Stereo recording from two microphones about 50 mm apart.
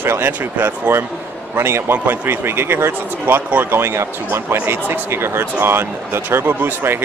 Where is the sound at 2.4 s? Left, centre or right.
Right.